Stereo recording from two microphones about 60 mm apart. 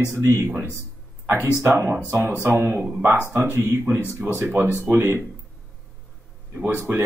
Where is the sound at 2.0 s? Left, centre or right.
Right.